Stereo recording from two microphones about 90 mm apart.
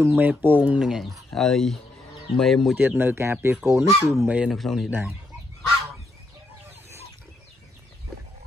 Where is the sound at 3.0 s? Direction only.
25° right (ahead or behind).